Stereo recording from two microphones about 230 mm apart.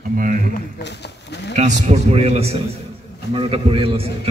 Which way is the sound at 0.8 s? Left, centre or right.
Left.